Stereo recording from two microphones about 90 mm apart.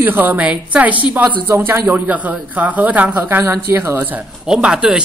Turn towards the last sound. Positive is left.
turn(degrees=-10)  # may be behind; listen again after turning